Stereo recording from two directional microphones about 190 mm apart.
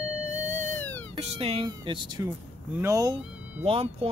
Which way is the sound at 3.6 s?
30° right (ahead or behind).